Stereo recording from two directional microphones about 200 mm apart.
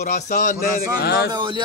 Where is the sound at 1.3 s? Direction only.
20° right (ahead or behind).